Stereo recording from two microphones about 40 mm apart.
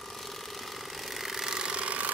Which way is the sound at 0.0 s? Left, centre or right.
Centre.